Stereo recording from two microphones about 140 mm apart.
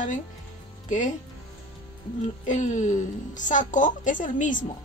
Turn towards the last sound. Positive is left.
turn(degrees=65)  # may be behind; listen again after turning